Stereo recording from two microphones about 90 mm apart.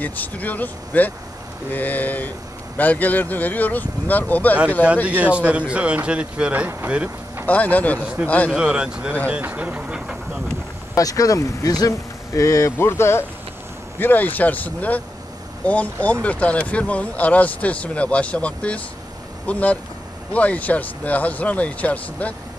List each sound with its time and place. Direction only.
0.0 s speech: 15° left (ahead or behind)
5.0 s speech: 15° right (ahead or behind)
7.4 s speech: 15° left (ahead or behind)
8.5 s speech: 10° right (ahead or behind)
11.0 s speech: 40° left (ahead or behind); by 22.3 s 15° left (ahead or behind)